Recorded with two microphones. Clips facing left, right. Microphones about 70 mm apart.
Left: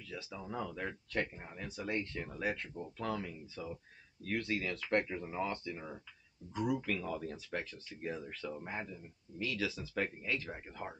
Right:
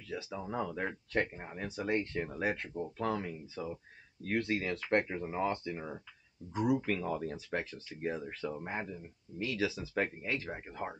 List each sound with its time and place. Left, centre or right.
0.1 s speech: right
6.9 s speech: right